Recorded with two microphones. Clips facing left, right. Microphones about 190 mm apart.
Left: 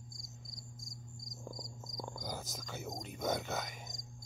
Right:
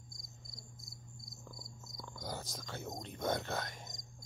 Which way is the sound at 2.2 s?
Centre (ahead or behind).